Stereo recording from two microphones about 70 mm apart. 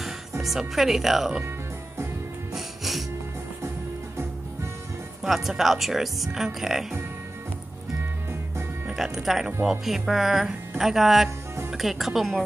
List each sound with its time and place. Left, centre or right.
0.4 s speech: centre
2.5 s music: centre
5.2 s speech: centre
8.8 s speech: centre
11.2 s music: right
11.7 s speech: centre